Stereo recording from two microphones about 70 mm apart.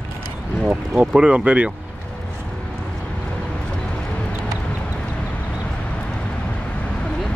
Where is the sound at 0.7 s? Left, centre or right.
Centre.